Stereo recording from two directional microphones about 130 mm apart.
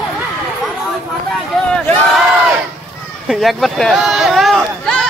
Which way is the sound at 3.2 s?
Centre (ahead or behind).